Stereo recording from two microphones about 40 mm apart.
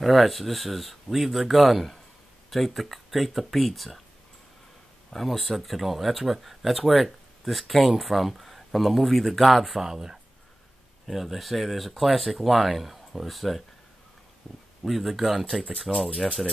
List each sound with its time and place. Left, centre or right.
0.0 s speech: centre
5.1 s speech: centre
9.8 s speech: centre
14.8 s speech: centre